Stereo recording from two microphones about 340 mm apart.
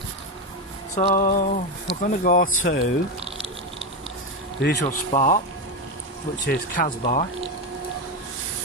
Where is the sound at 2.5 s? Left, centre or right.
Left.